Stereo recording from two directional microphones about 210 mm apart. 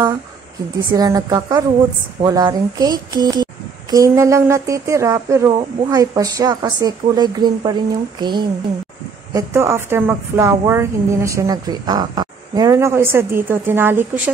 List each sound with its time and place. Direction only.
0.9 s a woman's voice: 15° right (ahead or behind)